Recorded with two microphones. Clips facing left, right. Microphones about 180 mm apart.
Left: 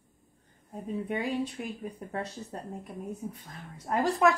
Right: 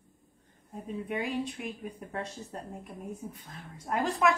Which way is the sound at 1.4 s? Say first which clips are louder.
Left 2 dB; 35° left (ahead or behind).